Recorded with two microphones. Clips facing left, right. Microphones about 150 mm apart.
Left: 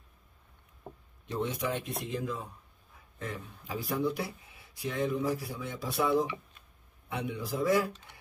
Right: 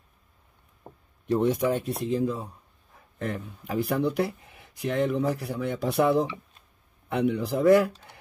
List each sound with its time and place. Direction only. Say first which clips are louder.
1.4 s speech: right 7 dB; 45° right (ahead or behind)
3.2 s speech: right 8 dB; 55° right (ahead or behind)